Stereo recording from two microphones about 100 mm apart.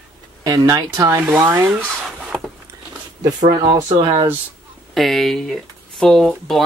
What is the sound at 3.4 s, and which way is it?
Speech, 40° right (ahead or behind).